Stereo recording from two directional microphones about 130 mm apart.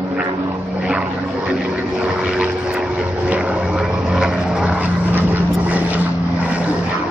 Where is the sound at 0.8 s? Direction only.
10° right (ahead or behind).